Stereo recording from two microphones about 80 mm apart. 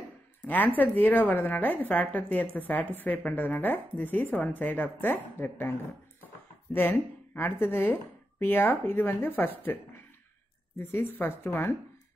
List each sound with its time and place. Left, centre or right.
0.5 s a woman's voice: left